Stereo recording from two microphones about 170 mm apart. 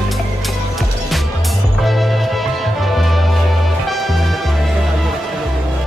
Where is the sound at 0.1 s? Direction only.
Centre (ahead or behind).